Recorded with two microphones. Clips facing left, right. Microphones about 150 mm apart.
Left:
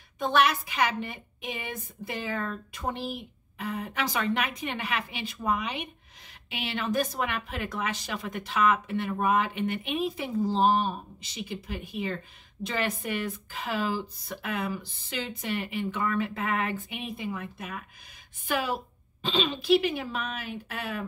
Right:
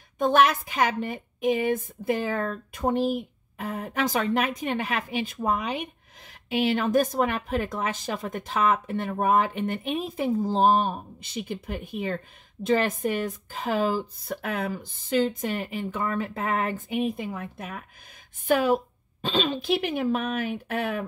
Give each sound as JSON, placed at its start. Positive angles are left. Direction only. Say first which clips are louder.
{"t": 0.2, "sound": "speech", "louder": "right 4 dB", "side_deg": -45}